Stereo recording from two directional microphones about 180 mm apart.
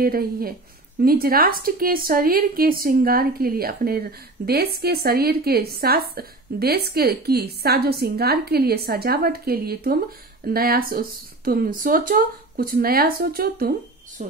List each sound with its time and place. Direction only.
0.0 s a woman's voice: 55° right (ahead or behind)